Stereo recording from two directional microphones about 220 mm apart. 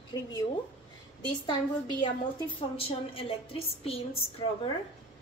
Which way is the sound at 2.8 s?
25° left (ahead or behind).